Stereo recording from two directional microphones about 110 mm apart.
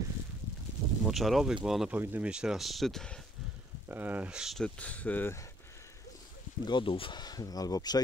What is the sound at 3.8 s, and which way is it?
Speech, 15° right (ahead or behind).